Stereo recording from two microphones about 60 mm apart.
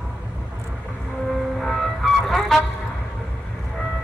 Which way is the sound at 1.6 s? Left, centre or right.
Centre.